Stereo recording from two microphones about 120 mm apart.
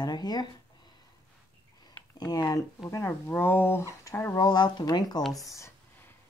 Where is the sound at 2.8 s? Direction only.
25° left (ahead or behind).